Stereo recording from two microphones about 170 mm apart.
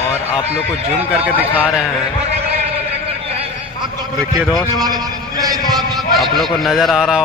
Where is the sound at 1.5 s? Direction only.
10° right (ahead or behind).